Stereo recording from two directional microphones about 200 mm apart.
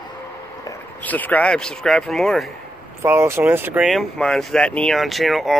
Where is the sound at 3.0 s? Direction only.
15° right (ahead or behind).